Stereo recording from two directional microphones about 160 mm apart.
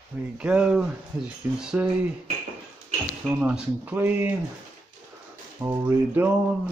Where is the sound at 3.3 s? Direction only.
10° right (ahead or behind).